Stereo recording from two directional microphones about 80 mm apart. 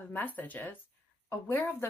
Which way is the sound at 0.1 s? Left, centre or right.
Left.